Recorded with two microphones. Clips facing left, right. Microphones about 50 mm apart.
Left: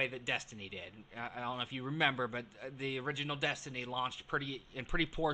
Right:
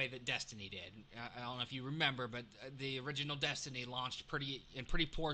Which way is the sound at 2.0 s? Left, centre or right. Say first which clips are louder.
Left 6 dB; left.